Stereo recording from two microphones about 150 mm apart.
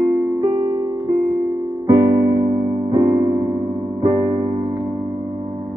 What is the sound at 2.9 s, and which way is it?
Music, 30° right (ahead or behind).